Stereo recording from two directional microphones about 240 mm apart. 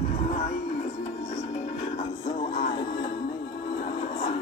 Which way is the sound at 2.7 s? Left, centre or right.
Centre.